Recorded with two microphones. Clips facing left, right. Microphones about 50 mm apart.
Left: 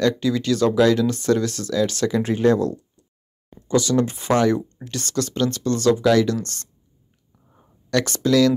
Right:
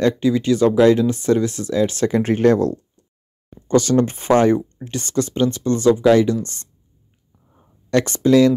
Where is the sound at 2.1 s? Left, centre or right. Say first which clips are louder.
Right 3 dB; right; by 6.7 s centre.